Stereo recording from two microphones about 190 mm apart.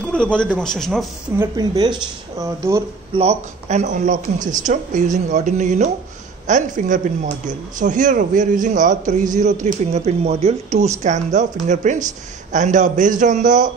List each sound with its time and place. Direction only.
0.1 s a man's voice: 5° left (ahead or behind)
1.4 s speech: 20° right (ahead or behind)
3.2 s speech: 35° right (ahead or behind)